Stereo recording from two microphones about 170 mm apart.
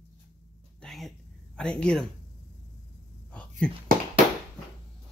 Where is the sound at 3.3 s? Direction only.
5° left (ahead or behind).